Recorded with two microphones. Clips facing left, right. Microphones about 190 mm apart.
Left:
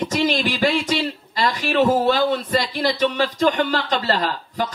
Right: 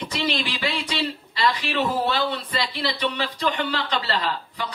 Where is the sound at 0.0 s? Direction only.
45° left (ahead or behind).